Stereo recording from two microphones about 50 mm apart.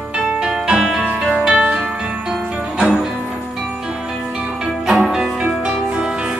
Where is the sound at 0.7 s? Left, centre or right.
Centre.